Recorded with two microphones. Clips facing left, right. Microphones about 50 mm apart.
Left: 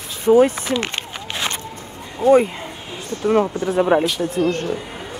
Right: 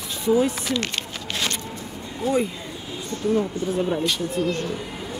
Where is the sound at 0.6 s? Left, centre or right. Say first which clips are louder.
Left 3 dB; left.